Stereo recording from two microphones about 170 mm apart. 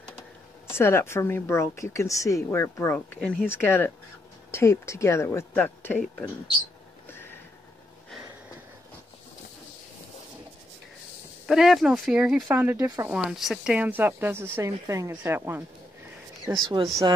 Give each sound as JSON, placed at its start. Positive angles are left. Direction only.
{"t": 0.7, "sound": "speech", "side_deg": 15}
{"t": 7.1, "sound": "a sound", "side_deg": 15}
{"t": 11.4, "sound": "speech", "side_deg": 0}
{"t": 12.5, "sound": "speech", "side_deg": -15}
{"t": 13.1, "sound": "speech", "side_deg": -5}